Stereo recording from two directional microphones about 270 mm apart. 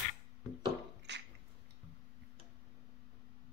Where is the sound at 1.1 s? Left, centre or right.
Right.